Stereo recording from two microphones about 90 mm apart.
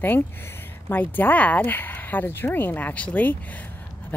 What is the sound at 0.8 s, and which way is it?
Speech, 20° left (ahead or behind).